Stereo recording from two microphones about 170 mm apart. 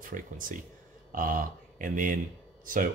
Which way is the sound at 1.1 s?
55° right (ahead or behind).